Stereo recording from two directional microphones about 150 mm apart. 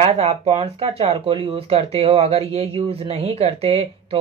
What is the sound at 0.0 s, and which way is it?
Speech, 45° right (ahead or behind).